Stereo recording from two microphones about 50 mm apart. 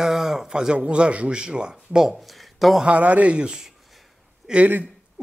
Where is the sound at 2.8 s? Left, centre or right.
Right.